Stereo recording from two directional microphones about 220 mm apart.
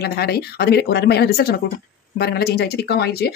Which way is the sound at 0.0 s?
45° left (ahead or behind).